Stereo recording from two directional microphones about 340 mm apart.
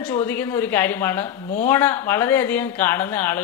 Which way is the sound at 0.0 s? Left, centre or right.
Centre.